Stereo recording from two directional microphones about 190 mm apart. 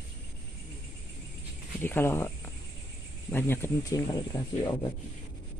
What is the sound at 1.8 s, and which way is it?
Speech, 10° left (ahead or behind).